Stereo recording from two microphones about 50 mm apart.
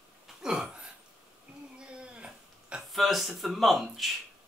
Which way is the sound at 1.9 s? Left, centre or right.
Centre.